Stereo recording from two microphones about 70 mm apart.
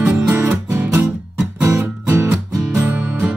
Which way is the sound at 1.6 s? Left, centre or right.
Right.